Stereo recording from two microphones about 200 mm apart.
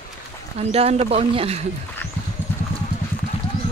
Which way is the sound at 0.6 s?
30° right (ahead or behind).